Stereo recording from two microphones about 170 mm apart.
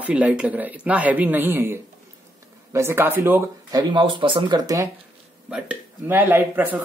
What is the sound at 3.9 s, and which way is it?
Speech, 30° right (ahead or behind).